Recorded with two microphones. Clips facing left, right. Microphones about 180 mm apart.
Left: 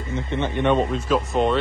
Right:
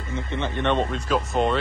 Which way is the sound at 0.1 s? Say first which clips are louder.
Left 3 dB; 15° left (ahead or behind).